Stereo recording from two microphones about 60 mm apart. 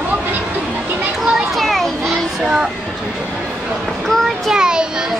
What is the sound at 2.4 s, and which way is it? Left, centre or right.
Speech, centre.